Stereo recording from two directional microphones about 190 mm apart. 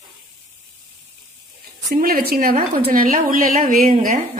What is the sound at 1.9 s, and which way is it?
A woman's voice, 45° right (ahead or behind).